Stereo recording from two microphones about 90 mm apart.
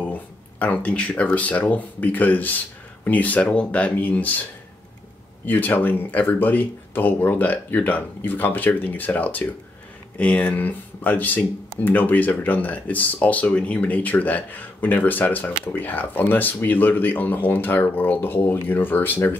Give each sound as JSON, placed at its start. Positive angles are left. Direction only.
{"t": 0.0, "sound": "speech", "side_deg": 15}
{"t": 5.5, "sound": "speech", "side_deg": 20}